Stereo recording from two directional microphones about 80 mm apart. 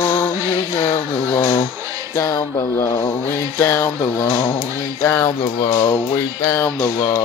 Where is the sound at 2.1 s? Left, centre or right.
Left.